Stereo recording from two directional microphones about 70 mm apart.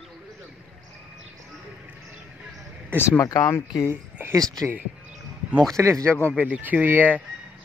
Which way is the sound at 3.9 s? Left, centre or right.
Right.